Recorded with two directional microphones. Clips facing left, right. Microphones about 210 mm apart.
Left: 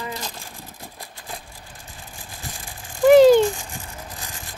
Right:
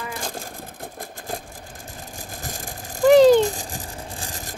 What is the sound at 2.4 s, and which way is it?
Vehicle, 45° right (ahead or behind).